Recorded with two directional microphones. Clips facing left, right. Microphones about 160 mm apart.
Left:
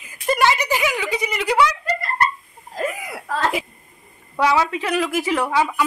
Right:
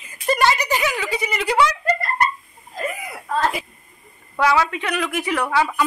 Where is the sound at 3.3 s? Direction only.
80° left.